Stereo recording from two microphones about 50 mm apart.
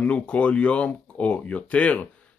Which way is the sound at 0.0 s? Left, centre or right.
Left.